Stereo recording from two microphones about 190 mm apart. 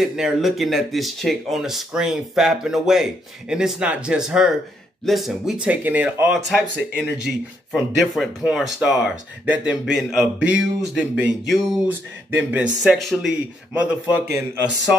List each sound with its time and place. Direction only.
0.0 s speech: centre (ahead or behind)